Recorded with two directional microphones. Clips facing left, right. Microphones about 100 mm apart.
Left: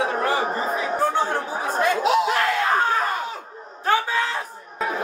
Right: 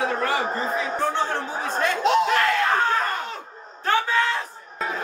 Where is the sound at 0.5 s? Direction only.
10° left (ahead or behind).